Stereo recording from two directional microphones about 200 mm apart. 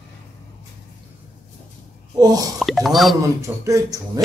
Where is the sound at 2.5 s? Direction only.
Centre (ahead or behind).